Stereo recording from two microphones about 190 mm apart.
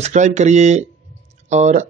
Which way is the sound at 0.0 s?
40° right (ahead or behind).